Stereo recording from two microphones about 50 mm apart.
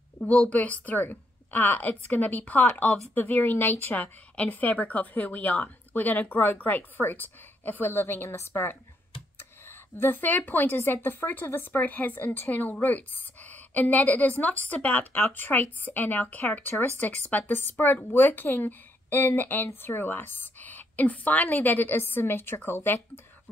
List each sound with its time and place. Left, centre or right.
0.2 s a woman's voice: left
10.8 s a woman's voice: left